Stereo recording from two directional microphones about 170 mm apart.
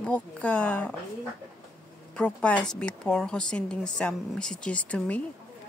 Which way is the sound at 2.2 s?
5° left (ahead or behind).